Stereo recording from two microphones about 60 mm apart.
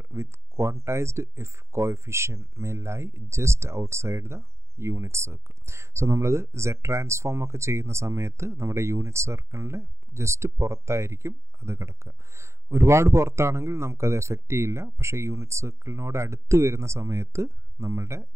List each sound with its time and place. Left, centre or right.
0.1 s speech: right